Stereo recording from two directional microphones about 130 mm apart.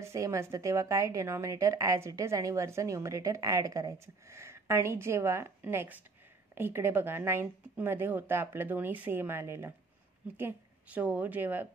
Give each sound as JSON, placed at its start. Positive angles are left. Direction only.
{"t": 0.0, "sound": "a woman's voice", "side_deg": -25}